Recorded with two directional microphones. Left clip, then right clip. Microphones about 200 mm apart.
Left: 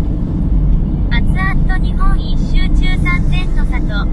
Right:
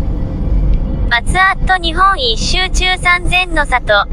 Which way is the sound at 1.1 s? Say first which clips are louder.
Right 11 dB; 60° right (ahead or behind).